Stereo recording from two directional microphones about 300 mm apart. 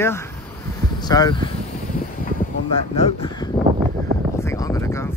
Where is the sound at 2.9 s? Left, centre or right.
Centre.